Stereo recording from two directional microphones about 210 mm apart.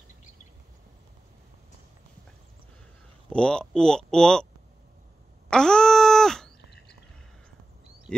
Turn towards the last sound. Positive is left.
turn(degrees=5)  # may be behind; listen again after turning